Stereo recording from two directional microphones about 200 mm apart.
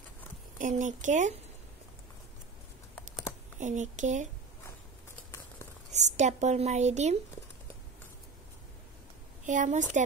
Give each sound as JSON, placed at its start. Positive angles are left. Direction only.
{"t": 0.6, "sound": "speech", "side_deg": -40}
{"t": 3.5, "sound": "speech", "side_deg": -35}
{"t": 5.9, "sound": "speech", "side_deg": -35}
{"t": 9.5, "sound": "speech", "side_deg": -40}